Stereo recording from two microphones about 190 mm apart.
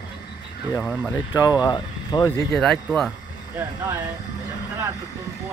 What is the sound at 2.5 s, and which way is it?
Speech, centre (ahead or behind).